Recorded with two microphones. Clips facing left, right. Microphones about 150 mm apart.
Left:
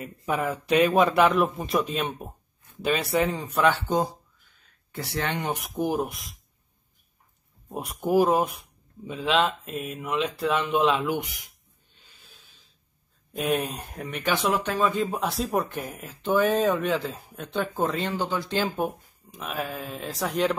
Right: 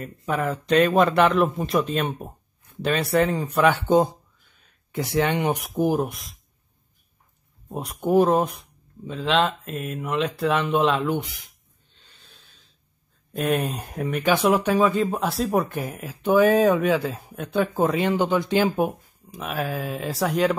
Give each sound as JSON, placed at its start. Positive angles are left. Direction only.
{"t": 0.3, "sound": "speech", "side_deg": 5}
{"t": 3.6, "sound": "speech", "side_deg": -15}
{"t": 5.7, "sound": "speech", "side_deg": 0}
{"t": 7.7, "sound": "speech", "side_deg": 0}
{"t": 11.1, "sound": "speech", "side_deg": 15}
{"t": 12.2, "sound": "snort", "side_deg": 0}
{"t": 13.3, "sound": "speech", "side_deg": 0}
{"t": 14.9, "sound": "speech", "side_deg": 0}